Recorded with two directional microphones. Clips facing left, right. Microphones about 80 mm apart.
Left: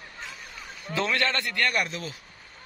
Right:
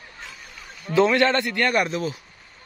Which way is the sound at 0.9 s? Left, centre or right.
Right.